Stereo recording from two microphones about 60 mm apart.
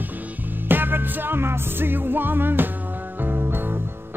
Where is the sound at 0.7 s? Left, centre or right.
Right.